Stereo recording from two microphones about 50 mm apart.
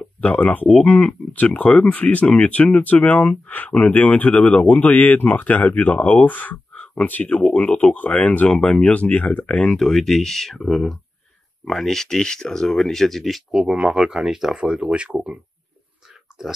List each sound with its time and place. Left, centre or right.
0.2 s speech: left
7.3 s speech: left
7.6 s speech: left
8.5 s speech: left
9.6 s speech: centre
13.7 s speech: centre